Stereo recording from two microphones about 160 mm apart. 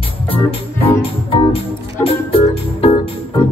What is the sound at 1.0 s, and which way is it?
Music, 35° left (ahead or behind).